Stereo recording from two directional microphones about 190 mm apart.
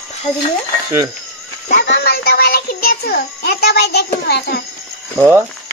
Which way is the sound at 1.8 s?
60° left (ahead or behind).